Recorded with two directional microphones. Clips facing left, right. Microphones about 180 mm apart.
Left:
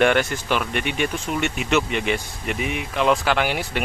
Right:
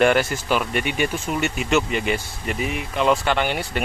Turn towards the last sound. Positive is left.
turn(degrees=0)  # may be behind; listen again after turning